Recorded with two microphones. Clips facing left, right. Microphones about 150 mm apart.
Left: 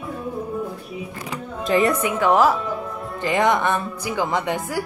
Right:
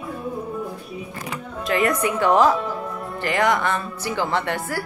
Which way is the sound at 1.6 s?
25° left (ahead or behind).